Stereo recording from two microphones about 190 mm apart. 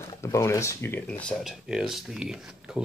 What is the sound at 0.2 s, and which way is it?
Speech, 15° left (ahead or behind).